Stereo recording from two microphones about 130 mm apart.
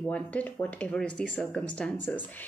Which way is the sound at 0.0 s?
10° left (ahead or behind).